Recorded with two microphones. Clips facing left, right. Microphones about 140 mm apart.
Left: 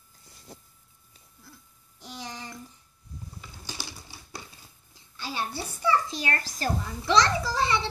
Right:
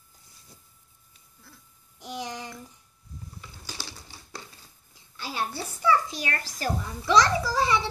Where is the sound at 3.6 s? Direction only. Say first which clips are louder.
Left 1 dB; 15° left (ahead or behind).